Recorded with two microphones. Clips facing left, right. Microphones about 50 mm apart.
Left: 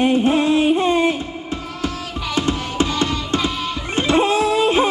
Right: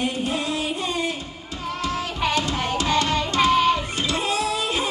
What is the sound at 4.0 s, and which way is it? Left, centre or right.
Music, left.